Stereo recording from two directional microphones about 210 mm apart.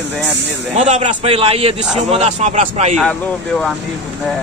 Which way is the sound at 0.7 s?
35° right (ahead or behind).